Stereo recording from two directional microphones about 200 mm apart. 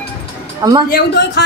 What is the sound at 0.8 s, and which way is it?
Speech, 55° left (ahead or behind).